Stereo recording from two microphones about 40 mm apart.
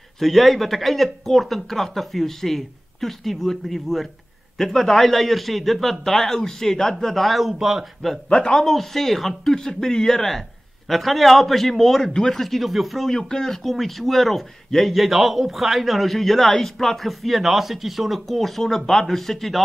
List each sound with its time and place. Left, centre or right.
0.2 s speech: centre
8.3 s speech: left
8.5 s speech: centre
12.1 s speech: centre
12.4 s speech: centre